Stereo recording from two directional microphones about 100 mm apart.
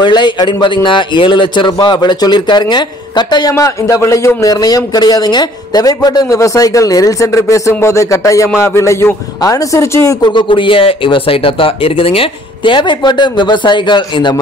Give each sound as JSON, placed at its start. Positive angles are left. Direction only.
{"t": 0.0, "sound": "a man's voice", "side_deg": 50}
{"t": 3.5, "sound": "speech", "side_deg": 30}
{"t": 10.2, "sound": "speech", "side_deg": 55}